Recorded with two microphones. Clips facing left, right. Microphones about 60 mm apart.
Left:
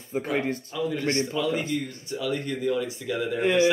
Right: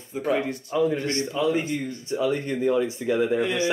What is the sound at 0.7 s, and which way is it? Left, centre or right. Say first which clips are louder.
Speech: right 6 dB; right.